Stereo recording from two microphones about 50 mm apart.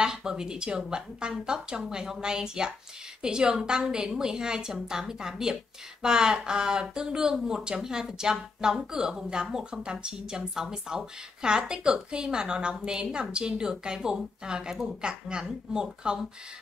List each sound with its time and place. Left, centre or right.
0.0 s speech: centre